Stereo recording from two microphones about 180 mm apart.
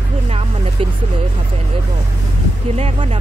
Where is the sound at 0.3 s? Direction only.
30° right (ahead or behind).